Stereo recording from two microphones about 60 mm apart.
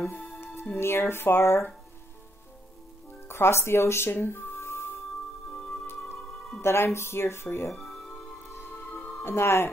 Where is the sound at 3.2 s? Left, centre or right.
Left.